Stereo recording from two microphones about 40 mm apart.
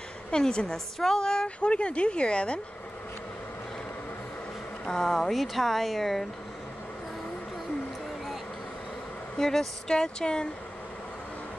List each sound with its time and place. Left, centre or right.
0.3 s a woman's voice: left
0.7 s a woman's voice: centre; by 2.6 s left
4.8 s speech: centre
9.4 s speech: centre
9.8 s a woman's voice: left